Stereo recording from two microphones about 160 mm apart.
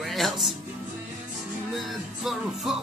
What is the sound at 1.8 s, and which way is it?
Music, centre (ahead or behind).